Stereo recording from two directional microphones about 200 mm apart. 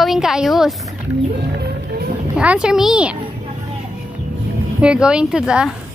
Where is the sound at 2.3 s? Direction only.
5° right (ahead or behind).